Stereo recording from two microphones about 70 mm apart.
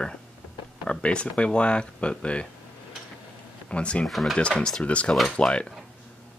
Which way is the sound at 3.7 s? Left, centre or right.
Centre.